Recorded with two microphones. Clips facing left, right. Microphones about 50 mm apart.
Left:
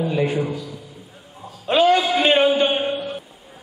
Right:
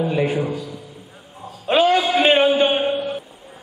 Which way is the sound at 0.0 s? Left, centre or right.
Centre.